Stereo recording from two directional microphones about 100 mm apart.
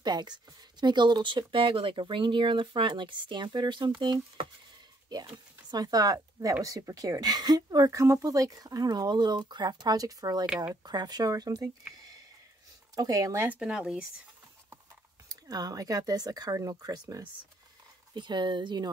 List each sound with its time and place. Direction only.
0.0 s speech: 45° right (ahead or behind)
5.1 s a woman's voice: 45° right (ahead or behind)
10.4 s speech: 10° right (ahead or behind)
10.7 s a woman's voice: 45° right (ahead or behind)
12.9 s a woman's voice: 35° right (ahead or behind)
13.5 s speech: 10° right (ahead or behind)
15.2 s a woman's voice: 40° right (ahead or behind)
18.1 s speech: 50° right (ahead or behind)